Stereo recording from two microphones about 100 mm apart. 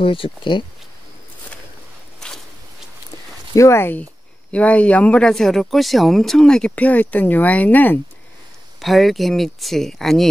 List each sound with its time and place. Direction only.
0.0 s speech: 60° left (ahead or behind)
2.1 s a sound: 5° left (ahead or behind)
3.5 s speech: 30° left (ahead or behind)
8.8 s speech: centre (ahead or behind)